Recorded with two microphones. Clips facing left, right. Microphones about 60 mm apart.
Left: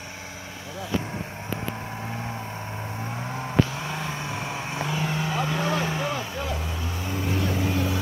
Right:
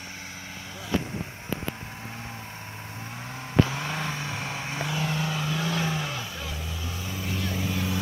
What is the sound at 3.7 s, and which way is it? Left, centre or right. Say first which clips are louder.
Vehicle: even; centre.